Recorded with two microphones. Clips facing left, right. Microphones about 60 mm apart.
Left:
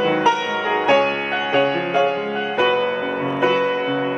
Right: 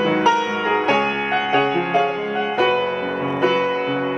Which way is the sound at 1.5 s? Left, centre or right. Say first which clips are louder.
Left 1 dB; centre.